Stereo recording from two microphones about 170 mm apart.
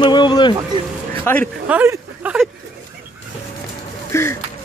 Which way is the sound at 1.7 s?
10° right (ahead or behind).